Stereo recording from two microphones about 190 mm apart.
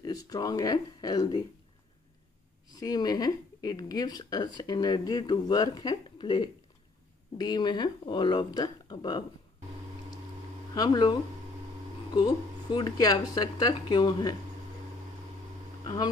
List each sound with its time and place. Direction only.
0.0 s a woman's voice: 20° left (ahead or behind)
2.7 s a woman's voice: 20° left (ahead or behind)
10.7 s a woman's voice: 20° left (ahead or behind)
15.8 s speech: 20° left (ahead or behind)